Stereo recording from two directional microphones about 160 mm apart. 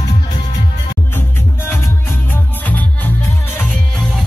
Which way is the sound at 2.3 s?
10° left (ahead or behind).